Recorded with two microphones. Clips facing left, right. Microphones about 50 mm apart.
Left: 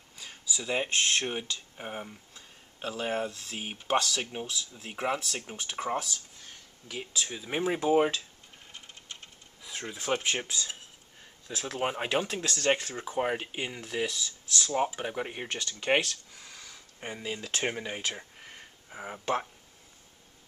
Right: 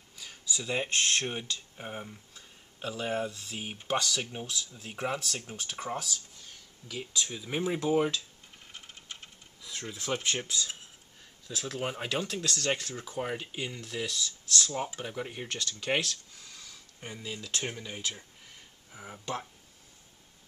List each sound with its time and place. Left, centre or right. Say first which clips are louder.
0.5 s speech: left 1 dB; centre
3.3 s speech: left 1 dB; left
4.9 s speech: left 2 dB; centre
5.9 s speech: left 3 dB; left
6.9 s speech: even; centre
8.7 s a sound: even; centre
9.6 s speech: left 2 dB; centre; by 19.4 s left